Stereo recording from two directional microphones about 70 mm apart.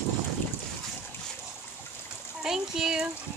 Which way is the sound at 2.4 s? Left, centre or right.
Centre.